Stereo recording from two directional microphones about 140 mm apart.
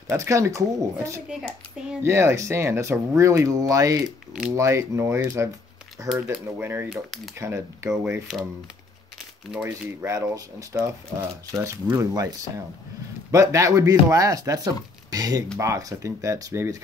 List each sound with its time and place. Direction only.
0.1 s speech: 20° right (ahead or behind)
8.3 s speech: 5° right (ahead or behind)
9.5 s speech: 5° right (ahead or behind)
10.0 s speech: 20° right (ahead or behind)